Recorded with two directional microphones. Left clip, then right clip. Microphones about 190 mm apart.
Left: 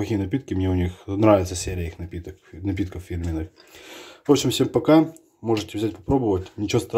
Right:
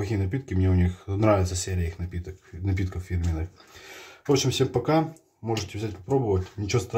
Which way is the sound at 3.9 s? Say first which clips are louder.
Left 5 dB; 40° left (ahead or behind).